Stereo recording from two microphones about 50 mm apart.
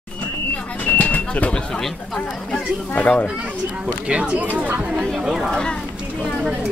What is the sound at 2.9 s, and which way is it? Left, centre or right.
Speech, left.